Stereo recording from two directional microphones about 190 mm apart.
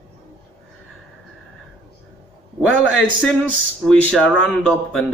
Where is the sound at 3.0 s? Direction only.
Centre (ahead or behind).